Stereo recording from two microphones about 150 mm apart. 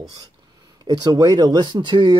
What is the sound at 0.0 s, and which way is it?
Speech, 25° right (ahead or behind).